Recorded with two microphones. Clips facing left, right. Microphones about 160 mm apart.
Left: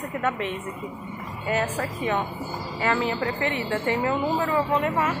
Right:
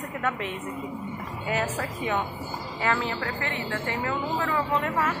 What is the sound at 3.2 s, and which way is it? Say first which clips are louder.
A woman's voice: left 5 dB; 20° left (ahead or behind).